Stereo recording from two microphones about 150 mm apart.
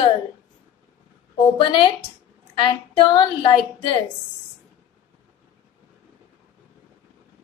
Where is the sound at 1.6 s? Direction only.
30° left (ahead or behind).